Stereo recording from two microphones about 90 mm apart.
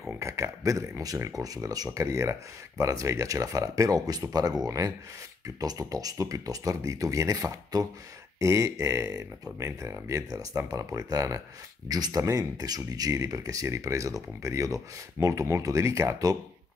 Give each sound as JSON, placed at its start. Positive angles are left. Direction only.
{"t": 0.2, "sound": "speech", "side_deg": -35}